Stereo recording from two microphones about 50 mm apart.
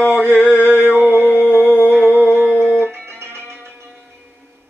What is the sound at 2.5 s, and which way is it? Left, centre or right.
Music, left.